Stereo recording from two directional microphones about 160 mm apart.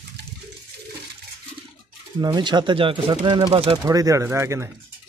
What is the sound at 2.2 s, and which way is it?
Speech, 30° right (ahead or behind).